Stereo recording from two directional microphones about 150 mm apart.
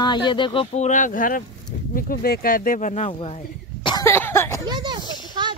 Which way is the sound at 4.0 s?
15° left (ahead or behind).